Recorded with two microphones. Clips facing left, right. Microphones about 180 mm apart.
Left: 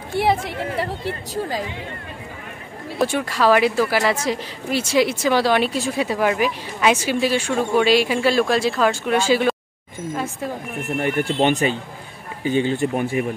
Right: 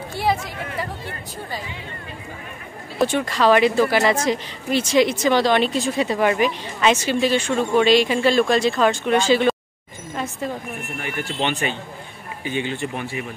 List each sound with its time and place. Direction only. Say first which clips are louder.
3.0 s a woman's voice: right 1 dB; 5° left (ahead or behind)
11.0 s speech: left 7 dB; 50° left (ahead or behind)